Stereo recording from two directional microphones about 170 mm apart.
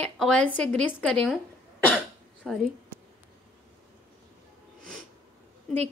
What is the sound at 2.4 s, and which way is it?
Speech, centre (ahead or behind).